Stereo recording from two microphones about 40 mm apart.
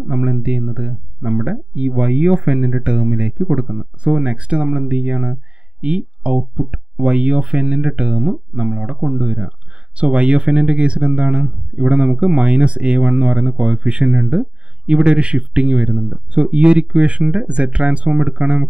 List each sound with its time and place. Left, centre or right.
0.0 s speech: right